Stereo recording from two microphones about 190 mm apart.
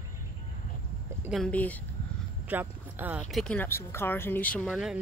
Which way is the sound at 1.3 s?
5° left (ahead or behind).